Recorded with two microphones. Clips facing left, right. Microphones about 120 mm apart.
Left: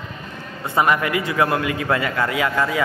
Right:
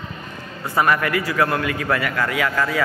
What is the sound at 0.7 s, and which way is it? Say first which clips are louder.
A man's voice: even; 20° left (ahead or behind).